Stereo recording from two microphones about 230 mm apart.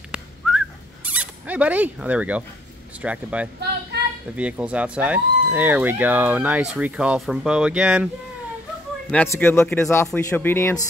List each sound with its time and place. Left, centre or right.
0.1 s whistling: centre
3.0 s speech: centre
9.1 s speech: centre